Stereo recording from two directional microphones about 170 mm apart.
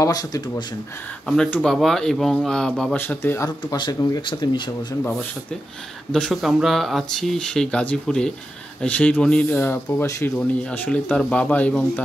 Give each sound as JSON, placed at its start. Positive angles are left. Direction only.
{"t": 0.0, "sound": "speech", "side_deg": 20}
{"t": 1.2, "sound": "speech", "side_deg": 5}
{"t": 6.1, "sound": "speech", "side_deg": 0}